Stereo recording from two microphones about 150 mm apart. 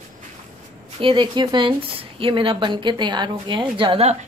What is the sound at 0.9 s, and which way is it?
A woman's voice, 35° right (ahead or behind).